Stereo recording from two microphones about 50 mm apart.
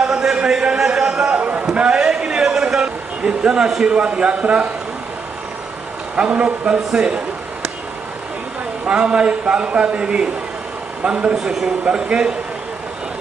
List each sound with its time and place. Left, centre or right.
0.0 s a man's voice: centre
1.4 s a sound: right
1.7 s a sound: centre
6.1 s a man's voice: centre
8.8 s a man's voice: centre
11.3 s a man's voice: centre
11.8 s a man's voice: centre